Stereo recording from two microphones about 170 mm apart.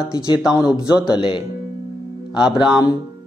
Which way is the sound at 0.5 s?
20° left (ahead or behind).